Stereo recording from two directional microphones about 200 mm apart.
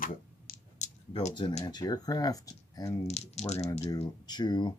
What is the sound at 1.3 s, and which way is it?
Speech, 25° left (ahead or behind).